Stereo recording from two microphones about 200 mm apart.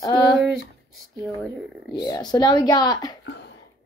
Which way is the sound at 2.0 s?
20° left (ahead or behind).